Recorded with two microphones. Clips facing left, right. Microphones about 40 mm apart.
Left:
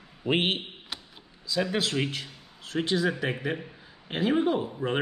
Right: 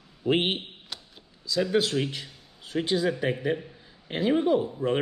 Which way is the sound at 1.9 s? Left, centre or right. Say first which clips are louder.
Right 1 dB; left.